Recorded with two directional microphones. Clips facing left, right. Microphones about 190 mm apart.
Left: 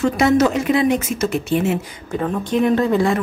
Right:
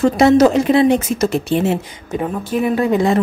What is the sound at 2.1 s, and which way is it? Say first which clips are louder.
Speech: even; 10° right (ahead or behind).